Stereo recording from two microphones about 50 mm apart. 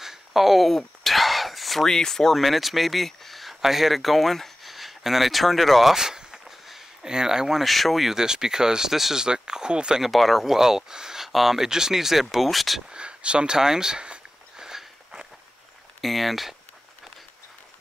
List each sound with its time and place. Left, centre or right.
0.0 s a sound: centre
1.9 s speech: centre
7.6 s speech: centre
10.0 s speech: centre
12.9 s a sound: right
16.0 s speech: centre